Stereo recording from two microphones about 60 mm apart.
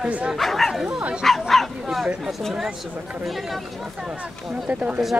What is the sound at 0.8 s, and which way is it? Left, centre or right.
Speech, centre.